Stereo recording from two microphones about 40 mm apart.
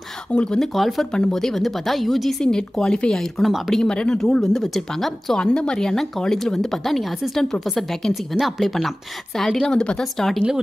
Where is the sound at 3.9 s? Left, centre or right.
Left.